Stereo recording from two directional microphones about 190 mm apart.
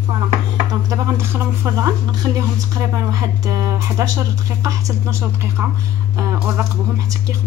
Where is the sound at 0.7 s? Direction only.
20° right (ahead or behind).